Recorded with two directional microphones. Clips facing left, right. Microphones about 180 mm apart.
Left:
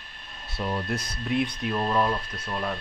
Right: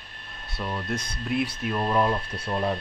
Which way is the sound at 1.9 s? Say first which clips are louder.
Right 1 dB; 20° right (ahead or behind).